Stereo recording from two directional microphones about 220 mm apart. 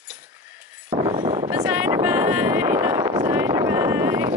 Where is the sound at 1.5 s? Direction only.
10° right (ahead or behind).